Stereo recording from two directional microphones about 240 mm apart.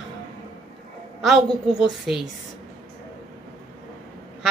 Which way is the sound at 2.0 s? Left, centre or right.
Centre.